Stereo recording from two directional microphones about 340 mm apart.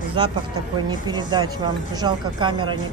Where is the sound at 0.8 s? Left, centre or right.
Centre.